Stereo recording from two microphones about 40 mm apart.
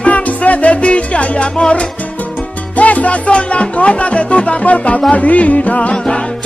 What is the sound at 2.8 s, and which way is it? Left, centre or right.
Music, left.